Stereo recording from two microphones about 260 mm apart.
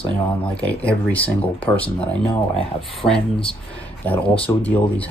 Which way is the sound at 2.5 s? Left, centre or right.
Centre.